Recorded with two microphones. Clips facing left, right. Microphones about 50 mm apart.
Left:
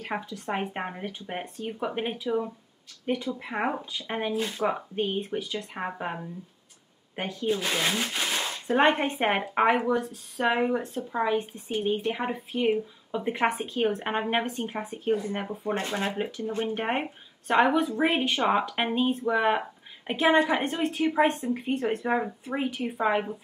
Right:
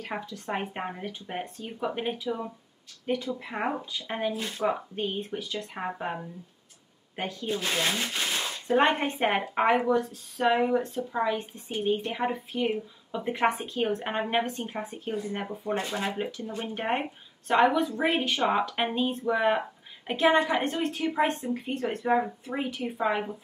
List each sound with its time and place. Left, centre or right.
0.0 s speech: centre
7.2 s speech: centre